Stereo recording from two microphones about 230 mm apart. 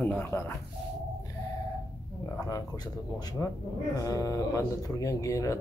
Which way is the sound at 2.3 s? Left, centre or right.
Centre.